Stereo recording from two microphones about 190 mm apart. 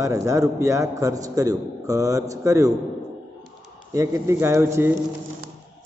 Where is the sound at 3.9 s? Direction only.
15° right (ahead or behind).